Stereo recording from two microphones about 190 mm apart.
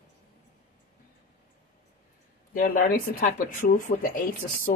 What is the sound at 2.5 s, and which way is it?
Speech, 50° left (ahead or behind).